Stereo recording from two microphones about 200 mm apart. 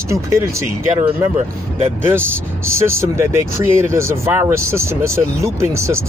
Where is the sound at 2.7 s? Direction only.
15° right (ahead or behind).